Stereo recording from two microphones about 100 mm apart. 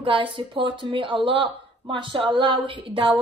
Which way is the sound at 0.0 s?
60° right (ahead or behind).